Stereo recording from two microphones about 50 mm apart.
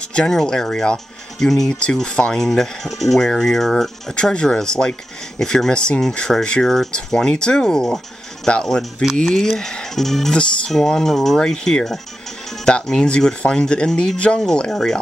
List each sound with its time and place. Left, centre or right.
0.1 s speech: centre
0.9 s speech: centre
4.1 s speech: centre